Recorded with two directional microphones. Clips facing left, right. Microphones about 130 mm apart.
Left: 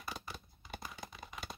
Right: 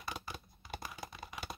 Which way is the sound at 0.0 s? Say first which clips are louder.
Right 2 dB; centre (ahead or behind).